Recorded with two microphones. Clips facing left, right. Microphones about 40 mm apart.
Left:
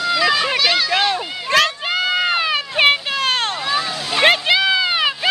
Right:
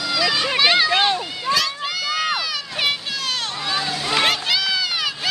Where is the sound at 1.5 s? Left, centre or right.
Left.